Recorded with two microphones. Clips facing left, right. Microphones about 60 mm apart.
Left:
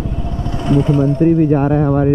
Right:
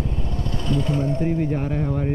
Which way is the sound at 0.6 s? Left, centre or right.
Left.